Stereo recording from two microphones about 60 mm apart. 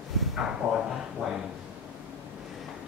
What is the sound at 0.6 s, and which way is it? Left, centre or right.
Speech, right.